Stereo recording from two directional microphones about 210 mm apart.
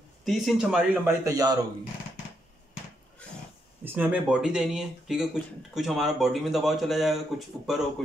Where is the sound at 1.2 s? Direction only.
15° right (ahead or behind).